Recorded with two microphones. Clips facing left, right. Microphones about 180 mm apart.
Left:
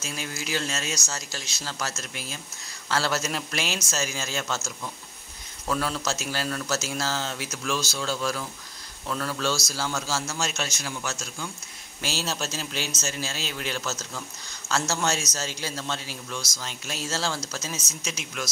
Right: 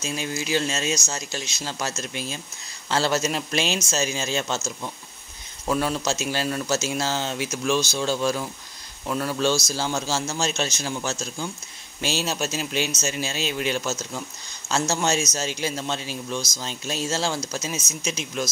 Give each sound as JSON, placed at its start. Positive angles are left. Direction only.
{"t": 0.0, "sound": "speech", "side_deg": -20}